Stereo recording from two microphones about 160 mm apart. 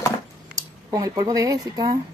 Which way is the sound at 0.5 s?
25° right (ahead or behind).